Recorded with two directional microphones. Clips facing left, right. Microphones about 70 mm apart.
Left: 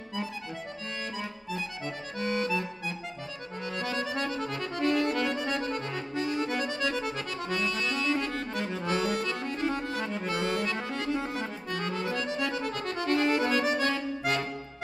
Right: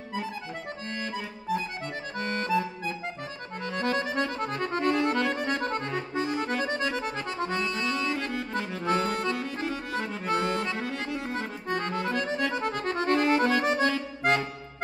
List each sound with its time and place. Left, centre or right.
2.1 s accordion: right
6.9 s accordion: right